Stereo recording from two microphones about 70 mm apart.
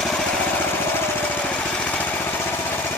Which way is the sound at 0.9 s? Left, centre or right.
Left.